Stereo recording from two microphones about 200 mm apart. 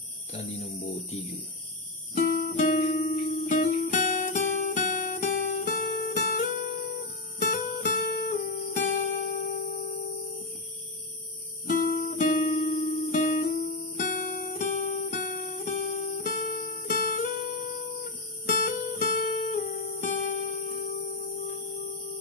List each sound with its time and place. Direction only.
0.6 s speech: 30° left (ahead or behind)
2.1 s music: 45° left (ahead or behind)
3.3 s guitar: 40° left (ahead or behind)
7.3 s music: 45° left (ahead or behind)
11.6 s music: 45° left (ahead or behind)
18.6 s guitar: 45° left (ahead or behind)